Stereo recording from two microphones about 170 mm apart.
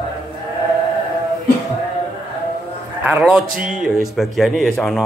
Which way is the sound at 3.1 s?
10° right (ahead or behind).